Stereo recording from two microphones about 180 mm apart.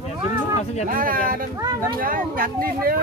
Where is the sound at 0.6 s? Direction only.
40° left (ahead or behind).